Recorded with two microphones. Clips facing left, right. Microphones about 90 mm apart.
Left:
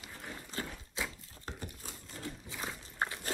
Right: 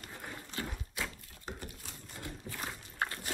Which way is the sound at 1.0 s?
25° left (ahead or behind).